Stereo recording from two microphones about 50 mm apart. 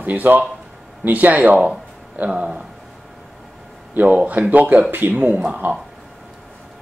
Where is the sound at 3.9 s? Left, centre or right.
Right.